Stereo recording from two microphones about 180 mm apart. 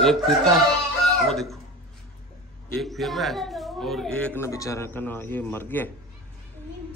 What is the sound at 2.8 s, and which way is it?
Speech, centre (ahead or behind).